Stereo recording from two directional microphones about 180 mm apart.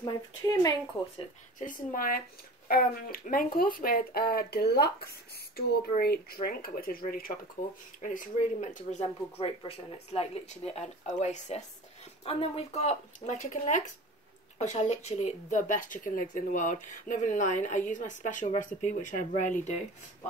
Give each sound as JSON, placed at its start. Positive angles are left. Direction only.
{"t": 0.5, "sound": "speech", "side_deg": 20}
{"t": 1.1, "sound": "speech", "side_deg": 45}